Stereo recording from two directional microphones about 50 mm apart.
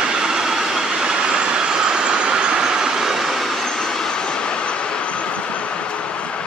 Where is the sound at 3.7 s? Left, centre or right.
Centre.